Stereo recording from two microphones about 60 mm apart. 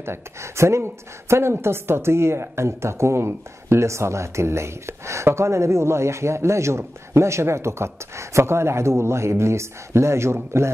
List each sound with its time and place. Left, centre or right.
0.0 s a woman's voice: right